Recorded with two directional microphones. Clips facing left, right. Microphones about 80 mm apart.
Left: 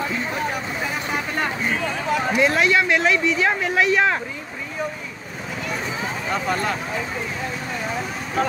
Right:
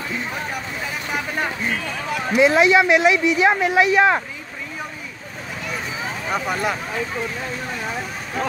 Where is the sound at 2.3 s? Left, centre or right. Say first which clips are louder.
Right 6 dB; centre.